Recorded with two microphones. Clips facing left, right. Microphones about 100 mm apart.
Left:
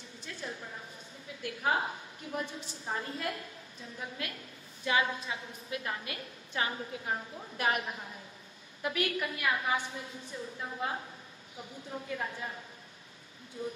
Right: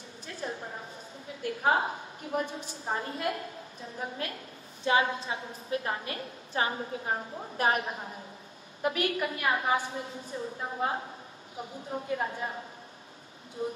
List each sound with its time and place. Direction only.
0.4 s a sound: 35° right (ahead or behind)
1.4 s a woman's voice: 35° right (ahead or behind)
13.6 s a woman's voice: 35° right (ahead or behind)